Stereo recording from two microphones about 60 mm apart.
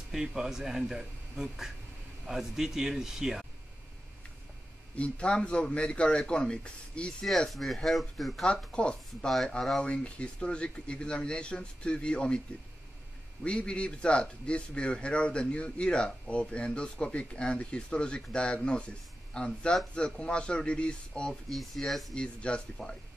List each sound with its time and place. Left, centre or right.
0.1 s speech: centre
4.9 s a man's voice: centre
7.2 s speech: centre
8.5 s a man's voice: centre
13.4 s a man's voice: centre
21.5 s speech: centre
22.1 s a man's voice: centre